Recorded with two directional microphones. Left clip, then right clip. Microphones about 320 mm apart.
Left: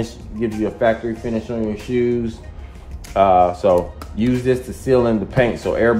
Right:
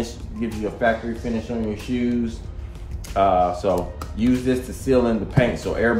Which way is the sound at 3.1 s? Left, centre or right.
Left.